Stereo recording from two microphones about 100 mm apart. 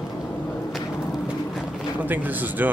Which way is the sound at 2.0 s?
15° right (ahead or behind).